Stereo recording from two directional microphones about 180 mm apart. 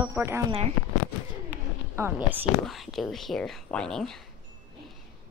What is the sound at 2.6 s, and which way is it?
Speech, centre (ahead or behind).